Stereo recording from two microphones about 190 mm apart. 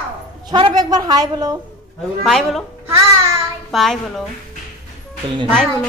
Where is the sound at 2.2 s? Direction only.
Centre (ahead or behind).